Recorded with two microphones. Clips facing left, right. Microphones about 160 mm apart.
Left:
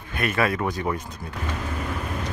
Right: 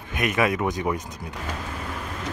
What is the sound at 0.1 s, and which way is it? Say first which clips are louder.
Speech: right 1 dB; 15° right (ahead or behind).